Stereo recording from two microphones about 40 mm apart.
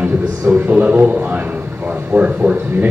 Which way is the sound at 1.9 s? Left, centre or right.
Right.